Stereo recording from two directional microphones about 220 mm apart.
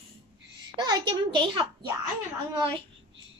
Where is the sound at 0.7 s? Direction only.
20° right (ahead or behind).